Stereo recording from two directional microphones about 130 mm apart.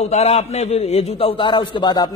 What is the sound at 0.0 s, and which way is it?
A man's voice, 55° left (ahead or behind).